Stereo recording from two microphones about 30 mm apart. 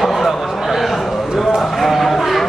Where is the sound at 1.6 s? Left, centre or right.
Centre.